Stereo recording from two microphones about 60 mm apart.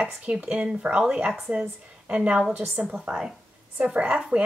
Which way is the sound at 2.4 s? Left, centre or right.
Centre.